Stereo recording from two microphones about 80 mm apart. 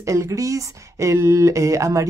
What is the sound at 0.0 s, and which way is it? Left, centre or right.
Speech, right.